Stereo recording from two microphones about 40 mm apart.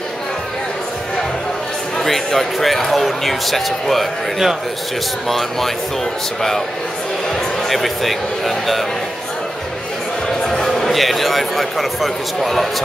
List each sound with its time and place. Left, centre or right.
2.0 s speech: centre
7.7 s speech: centre
10.6 s a man's voice: centre